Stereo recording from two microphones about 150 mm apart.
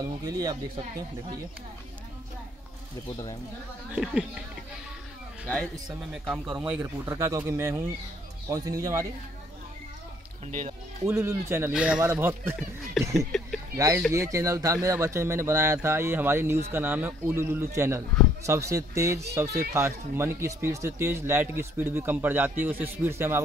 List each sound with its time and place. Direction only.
0.0 s speech: 25° right (ahead or behind)
3.9 s speech: 5° right (ahead or behind)
5.5 s speech: centre (ahead or behind); by 9.0 s 20° right (ahead or behind)
10.4 s speech: 55° right (ahead or behind)
11.1 s speech: 20° right (ahead or behind)
11.7 s speech: 5° right (ahead or behind)